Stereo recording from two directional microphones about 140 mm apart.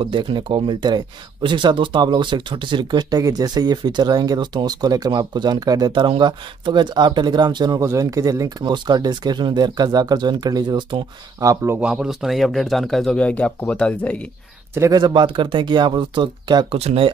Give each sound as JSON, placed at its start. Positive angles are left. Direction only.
{"t": 0.0, "sound": "speech", "side_deg": -35}
{"t": 11.6, "sound": "speech", "side_deg": -15}
{"t": 11.9, "sound": "speech", "side_deg": -5}
{"t": 14.7, "sound": "speech", "side_deg": -25}
{"t": 16.7, "sound": "speech", "side_deg": -45}